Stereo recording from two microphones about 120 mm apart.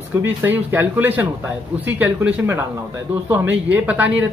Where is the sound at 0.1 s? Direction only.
20° right (ahead or behind).